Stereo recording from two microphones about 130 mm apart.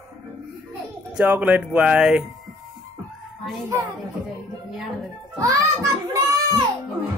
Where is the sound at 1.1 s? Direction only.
10° right (ahead or behind).